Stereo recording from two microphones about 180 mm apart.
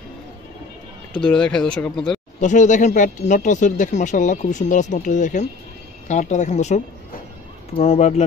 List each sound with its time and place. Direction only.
1.2 s speech: 5° left (ahead or behind)
2.4 s speech: 45° left (ahead or behind)